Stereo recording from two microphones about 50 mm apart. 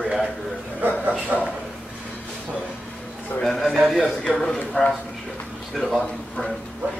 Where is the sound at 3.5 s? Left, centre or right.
Centre.